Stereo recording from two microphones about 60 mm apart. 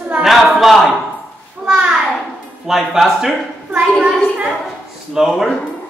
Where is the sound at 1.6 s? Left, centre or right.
Centre.